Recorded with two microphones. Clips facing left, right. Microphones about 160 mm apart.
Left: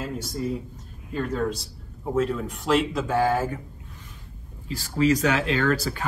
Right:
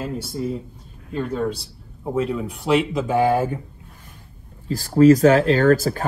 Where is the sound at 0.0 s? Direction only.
5° right (ahead or behind).